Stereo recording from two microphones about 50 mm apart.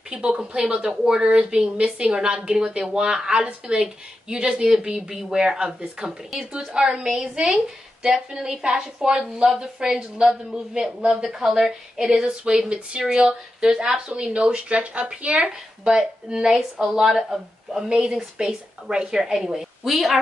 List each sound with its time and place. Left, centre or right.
0.1 s a woman's voice: centre
11.2 s a woman's voice: centre
13.0 s a woman's voice: centre
17.8 s speech: centre
18.1 s a woman's voice: centre